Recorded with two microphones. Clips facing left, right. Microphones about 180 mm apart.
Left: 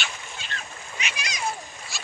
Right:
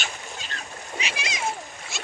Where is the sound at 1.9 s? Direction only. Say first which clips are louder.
Right 4 dB; 20° right (ahead or behind).